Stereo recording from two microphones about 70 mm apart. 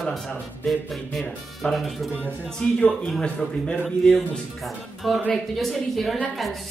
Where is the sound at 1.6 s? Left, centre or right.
Centre.